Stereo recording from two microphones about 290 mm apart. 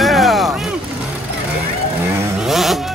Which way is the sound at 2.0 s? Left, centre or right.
Centre.